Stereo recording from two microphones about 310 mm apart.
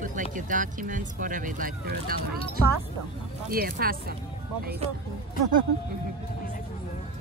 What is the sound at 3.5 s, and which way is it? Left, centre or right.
Speech, right.